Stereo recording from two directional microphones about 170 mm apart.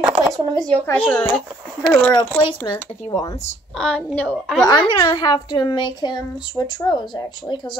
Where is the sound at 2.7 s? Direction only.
20° left (ahead or behind).